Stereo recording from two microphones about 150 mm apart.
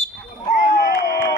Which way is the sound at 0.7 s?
90° left.